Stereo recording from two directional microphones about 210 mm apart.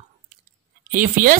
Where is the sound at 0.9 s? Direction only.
40° right (ahead or behind).